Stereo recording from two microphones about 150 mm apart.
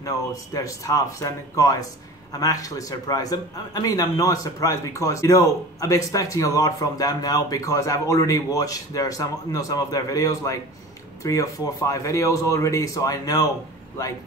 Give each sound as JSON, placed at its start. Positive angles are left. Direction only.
{"t": 0.0, "sound": "a man's voice", "side_deg": 20}